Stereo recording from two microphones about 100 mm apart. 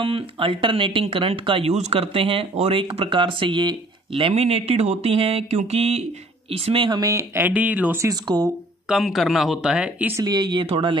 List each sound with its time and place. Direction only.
0.0 s speech: 65° right (ahead or behind); by 6.0 s 90° right
6.5 s speech: 70° right (ahead or behind)
6.9 s speech: 35° right (ahead or behind)
7.3 s speech: 15° right (ahead or behind)
8.0 s speech: 40° right (ahead or behind)
8.8 s speech: 5° right (ahead or behind)
10.2 s speech: 45° right (ahead or behind)